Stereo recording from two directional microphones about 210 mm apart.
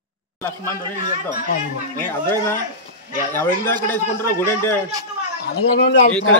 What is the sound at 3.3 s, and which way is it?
Speech, 10° left (ahead or behind).